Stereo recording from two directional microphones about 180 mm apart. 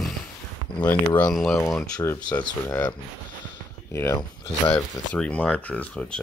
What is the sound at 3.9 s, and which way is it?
Speech, 15° left (ahead or behind).